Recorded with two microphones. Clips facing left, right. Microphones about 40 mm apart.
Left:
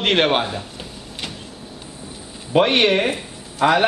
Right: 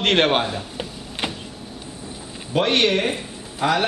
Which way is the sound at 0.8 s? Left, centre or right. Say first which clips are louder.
Right 4 dB; centre.